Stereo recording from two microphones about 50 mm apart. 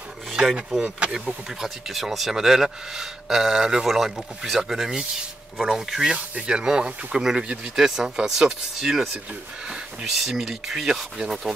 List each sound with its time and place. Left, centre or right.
0.3 s a sound: centre
0.8 s speech: right
1.6 s speech: centre
6.1 s speech: right; by 11.5 s centre